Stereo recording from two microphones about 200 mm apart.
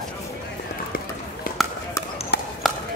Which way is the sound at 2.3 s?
55° left (ahead or behind).